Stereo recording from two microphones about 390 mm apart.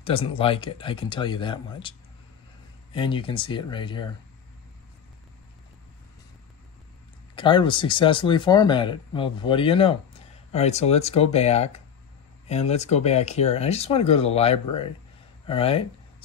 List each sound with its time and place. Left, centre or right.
0.0 s speech: centre
7.3 s speech: centre